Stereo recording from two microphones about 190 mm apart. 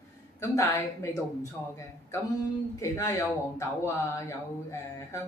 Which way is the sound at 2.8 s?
15° left (ahead or behind).